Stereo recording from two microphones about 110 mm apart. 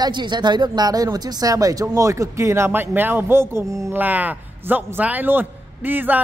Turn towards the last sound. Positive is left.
turn(degrees=-15)  # may be behind; listen again after turning